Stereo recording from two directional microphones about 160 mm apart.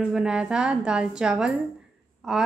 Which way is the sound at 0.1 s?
5° right (ahead or behind).